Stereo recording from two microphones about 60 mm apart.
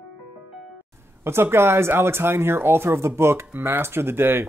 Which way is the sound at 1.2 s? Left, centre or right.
Right.